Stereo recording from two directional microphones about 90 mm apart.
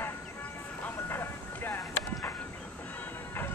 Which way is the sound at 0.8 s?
25° left (ahead or behind).